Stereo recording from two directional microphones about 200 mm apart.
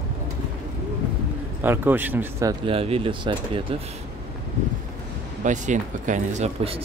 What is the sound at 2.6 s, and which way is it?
Speech, 30° right (ahead or behind).